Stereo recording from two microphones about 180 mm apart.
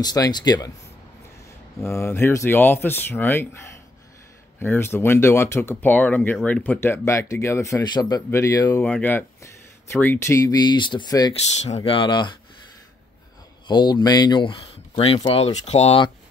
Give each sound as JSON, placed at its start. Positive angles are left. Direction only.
{"t": 0.0, "sound": "speech", "side_deg": 20}
{"t": 1.8, "sound": "speech", "side_deg": 15}
{"t": 4.6, "sound": "speech", "side_deg": 15}
{"t": 11.3, "sound": "speech", "side_deg": 35}
{"t": 13.7, "sound": "speech", "side_deg": 25}